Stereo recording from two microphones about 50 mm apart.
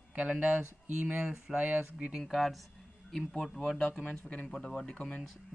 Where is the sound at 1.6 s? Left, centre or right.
Right.